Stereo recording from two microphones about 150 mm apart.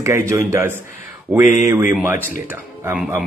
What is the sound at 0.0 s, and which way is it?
A man's voice, 20° right (ahead or behind).